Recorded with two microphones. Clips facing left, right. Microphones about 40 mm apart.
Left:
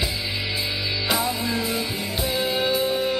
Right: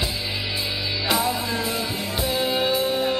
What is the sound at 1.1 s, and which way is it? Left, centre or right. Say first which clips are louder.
Music: right 2 dB; centre.